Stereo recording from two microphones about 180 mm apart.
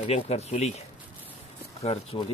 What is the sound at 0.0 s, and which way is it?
Speech, 35° left (ahead or behind).